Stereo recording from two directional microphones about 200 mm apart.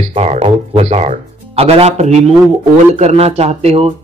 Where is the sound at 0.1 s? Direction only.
30° right (ahead or behind).